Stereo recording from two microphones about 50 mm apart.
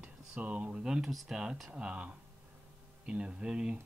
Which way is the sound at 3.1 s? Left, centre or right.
Right.